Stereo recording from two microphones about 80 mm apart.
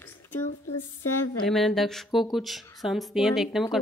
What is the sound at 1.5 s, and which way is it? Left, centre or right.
A woman's voice, centre.